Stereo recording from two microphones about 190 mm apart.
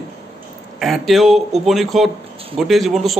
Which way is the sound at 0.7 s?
Centre (ahead or behind).